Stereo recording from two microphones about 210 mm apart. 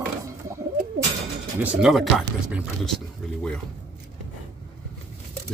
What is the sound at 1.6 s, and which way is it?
A man's voice, centre (ahead or behind).